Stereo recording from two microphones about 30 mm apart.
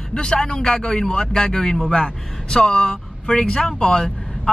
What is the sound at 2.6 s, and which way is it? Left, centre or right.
Speech, left.